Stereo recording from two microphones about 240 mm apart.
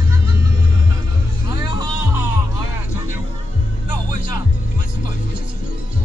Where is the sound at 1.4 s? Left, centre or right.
Centre.